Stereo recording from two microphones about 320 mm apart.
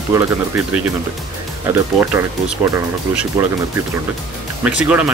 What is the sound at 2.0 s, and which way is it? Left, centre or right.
Speech, centre.